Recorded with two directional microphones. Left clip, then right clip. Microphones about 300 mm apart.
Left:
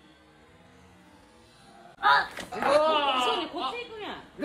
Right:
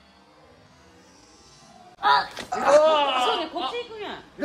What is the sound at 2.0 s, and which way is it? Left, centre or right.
Speech, centre.